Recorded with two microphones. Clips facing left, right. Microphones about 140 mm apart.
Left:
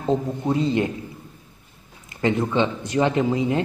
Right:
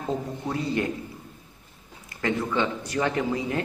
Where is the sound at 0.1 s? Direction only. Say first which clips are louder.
Left 8 dB; 20° left (ahead or behind).